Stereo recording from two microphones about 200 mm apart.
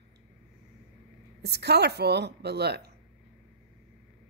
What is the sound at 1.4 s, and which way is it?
Speech, 55° right (ahead or behind).